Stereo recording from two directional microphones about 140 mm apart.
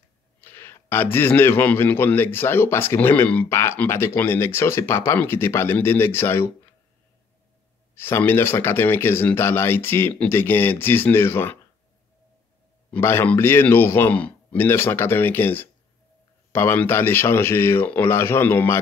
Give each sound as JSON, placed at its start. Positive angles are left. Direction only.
{"t": 0.4, "sound": "a man's voice", "side_deg": 15}
{"t": 7.9, "sound": "a man's voice", "side_deg": 15}
{"t": 12.9, "sound": "a man's voice", "side_deg": 15}